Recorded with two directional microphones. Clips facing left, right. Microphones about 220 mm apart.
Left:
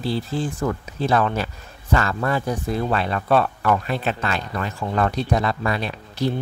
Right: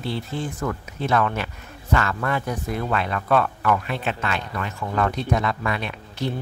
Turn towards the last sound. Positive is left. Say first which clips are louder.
# left 4 dB
turn(degrees=35)  # may be behind; listen again after turning